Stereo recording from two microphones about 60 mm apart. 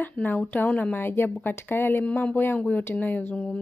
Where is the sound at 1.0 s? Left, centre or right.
Left.